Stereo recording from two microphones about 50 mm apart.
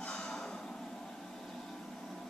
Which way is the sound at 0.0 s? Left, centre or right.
Left.